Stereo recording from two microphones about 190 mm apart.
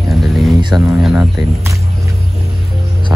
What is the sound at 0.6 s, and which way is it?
Speech, 25° right (ahead or behind).